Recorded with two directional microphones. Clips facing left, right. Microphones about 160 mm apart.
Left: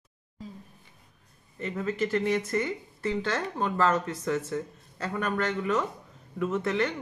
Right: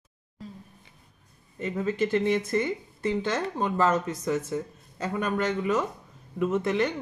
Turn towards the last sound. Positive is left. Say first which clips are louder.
# right 2 dB
turn(degrees=-20)  # may be behind; listen again after turning